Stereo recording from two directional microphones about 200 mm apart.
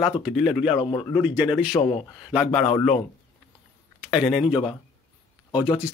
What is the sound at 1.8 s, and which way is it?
Speech, 30° left (ahead or behind).